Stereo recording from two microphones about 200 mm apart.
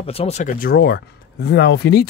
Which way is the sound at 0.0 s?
30° left (ahead or behind).